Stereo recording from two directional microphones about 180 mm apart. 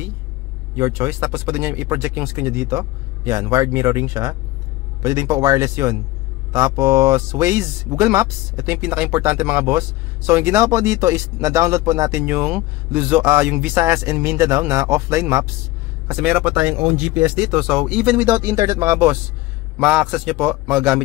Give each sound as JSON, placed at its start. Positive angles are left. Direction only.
{"t": 0.7, "sound": "speech", "side_deg": -15}